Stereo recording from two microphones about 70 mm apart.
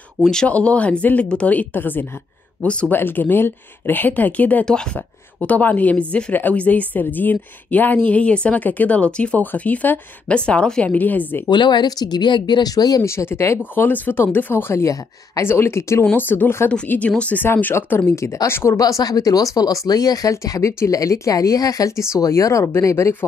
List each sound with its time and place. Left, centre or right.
0.2 s speech: centre; by 2.0 s left
2.6 s speech: centre
2.9 s speech: left
11.4 s speech: left
13.0 s speech: left
13.7 s speech: left
17.5 s speech: left
18.8 s speech: left